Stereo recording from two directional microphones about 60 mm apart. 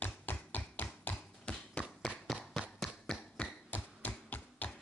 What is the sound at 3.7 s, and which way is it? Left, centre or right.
Tap, left.